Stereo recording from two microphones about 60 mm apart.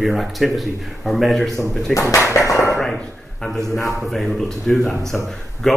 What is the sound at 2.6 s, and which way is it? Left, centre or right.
Speech, centre.